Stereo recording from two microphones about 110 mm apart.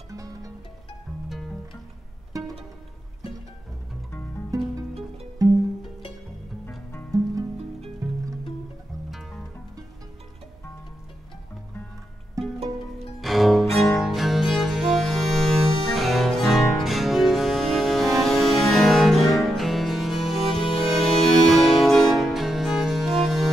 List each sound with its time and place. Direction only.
0.1 s music: 30° right (ahead or behind)
2.3 s music: 30° right (ahead or behind)
5.4 s music: 35° right (ahead or behind)
7.1 s music: 30° right (ahead or behind)
9.1 s music: centre (ahead or behind)
12.4 s music: 30° right (ahead or behind)
13.2 s cello: centre (ahead or behind)
14.0 s music: centre (ahead or behind)